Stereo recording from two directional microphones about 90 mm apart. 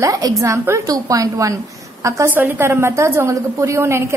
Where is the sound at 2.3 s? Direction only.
25° right (ahead or behind).